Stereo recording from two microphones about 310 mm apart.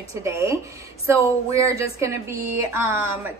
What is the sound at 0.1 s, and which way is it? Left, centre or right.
Speech, centre.